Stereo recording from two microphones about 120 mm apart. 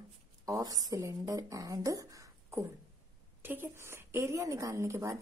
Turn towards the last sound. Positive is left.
turn(degrees=-25)  # may be behind; listen again after turning